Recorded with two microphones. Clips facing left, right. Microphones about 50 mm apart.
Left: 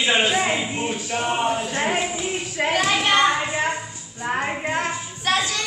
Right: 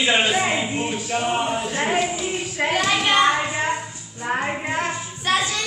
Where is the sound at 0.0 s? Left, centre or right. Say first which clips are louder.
Even; centre.